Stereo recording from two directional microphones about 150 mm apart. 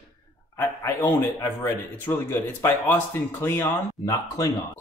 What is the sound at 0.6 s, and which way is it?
Speech, 20° left (ahead or behind).